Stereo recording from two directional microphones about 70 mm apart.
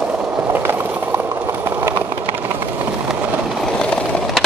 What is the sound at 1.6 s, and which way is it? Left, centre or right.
Train, right.